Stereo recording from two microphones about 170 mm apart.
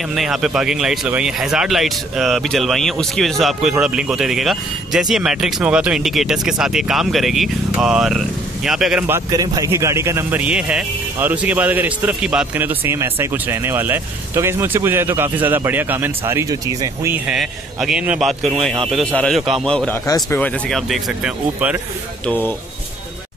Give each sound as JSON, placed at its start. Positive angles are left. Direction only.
{"t": 0.1, "sound": "speech", "side_deg": 0}
{"t": 9.0, "sound": "a man's voice", "side_deg": -15}
{"t": 17.3, "sound": "speech", "side_deg": 0}
{"t": 22.2, "sound": "speech", "side_deg": 10}